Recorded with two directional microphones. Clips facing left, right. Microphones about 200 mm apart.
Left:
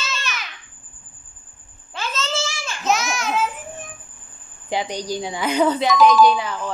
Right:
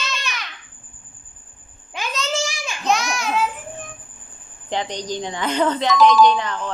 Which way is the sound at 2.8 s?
Centre (ahead or behind).